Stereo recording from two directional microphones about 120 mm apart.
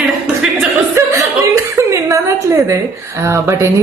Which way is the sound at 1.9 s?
25° right (ahead or behind).